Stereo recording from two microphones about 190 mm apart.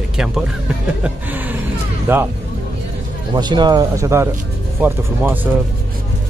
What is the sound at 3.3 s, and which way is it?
Speech, 25° right (ahead or behind).